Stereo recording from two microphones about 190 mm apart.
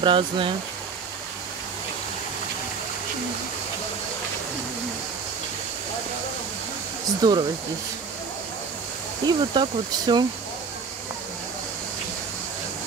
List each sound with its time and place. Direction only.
0.0 s speech: 25° right (ahead or behind)
7.2 s speech: 20° right (ahead or behind)
9.2 s speech: 25° right (ahead or behind)